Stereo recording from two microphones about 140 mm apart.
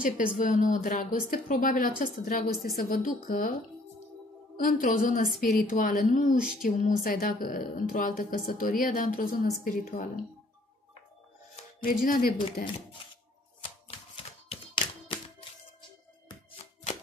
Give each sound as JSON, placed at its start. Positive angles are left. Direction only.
{"t": 0.0, "sound": "a woman's voice", "side_deg": 70}
{"t": 4.6, "sound": "a woman's voice", "side_deg": 75}
{"t": 6.6, "sound": "a woman's voice", "side_deg": 80}
{"t": 11.8, "sound": "speech", "side_deg": 85}
{"t": 13.6, "sound": "hands", "side_deg": 40}